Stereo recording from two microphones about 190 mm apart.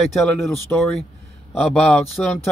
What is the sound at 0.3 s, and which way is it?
A man's voice, 5° left (ahead or behind).